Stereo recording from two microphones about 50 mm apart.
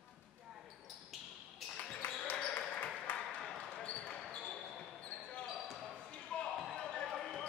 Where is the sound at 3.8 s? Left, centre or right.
Centre.